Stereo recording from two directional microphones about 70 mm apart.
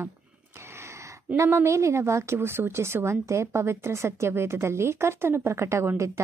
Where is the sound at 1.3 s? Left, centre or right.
Right.